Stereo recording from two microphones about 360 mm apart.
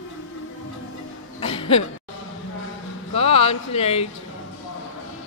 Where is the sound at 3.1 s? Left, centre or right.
Centre.